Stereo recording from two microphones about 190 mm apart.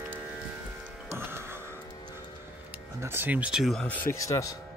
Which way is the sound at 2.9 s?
10° right (ahead or behind).